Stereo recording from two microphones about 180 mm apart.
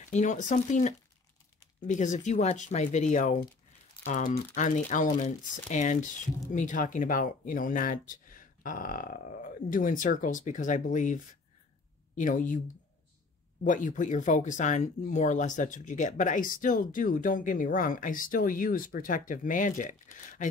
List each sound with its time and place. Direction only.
0.1 s speech: 45° left (ahead or behind)
12.2 s speech: 45° left (ahead or behind)
13.7 s speech: 45° left (ahead or behind)